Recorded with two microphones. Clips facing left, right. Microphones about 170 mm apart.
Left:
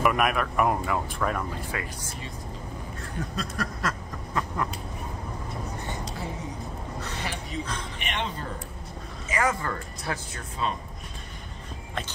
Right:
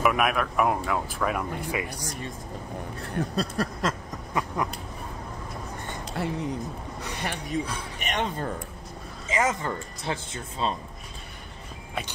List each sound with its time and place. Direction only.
0.0 s speech: centre (ahead or behind)
1.5 s speech: 15° right (ahead or behind)
3.0 s a sound: 30° right (ahead or behind)
4.3 s cat: 15° right (ahead or behind)
6.2 s speech: 65° right (ahead or behind)
7.0 s a sound: 15° right (ahead or behind)
7.5 s speech: 50° right (ahead or behind)
9.3 s speech: 20° right (ahead or behind)